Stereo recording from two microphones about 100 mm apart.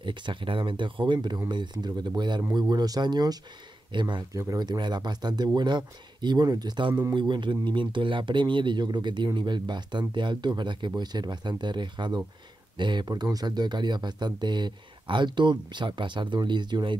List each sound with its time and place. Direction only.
0.0 s speech: 55° right (ahead or behind)
4.3 s speech: 35° right (ahead or behind); by 16.9 s 50° right (ahead or behind)